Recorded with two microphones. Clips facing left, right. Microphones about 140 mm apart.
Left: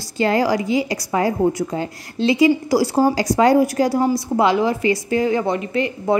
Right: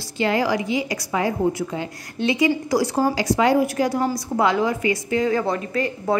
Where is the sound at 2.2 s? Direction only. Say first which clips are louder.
Left 5 dB; 30° left (ahead or behind).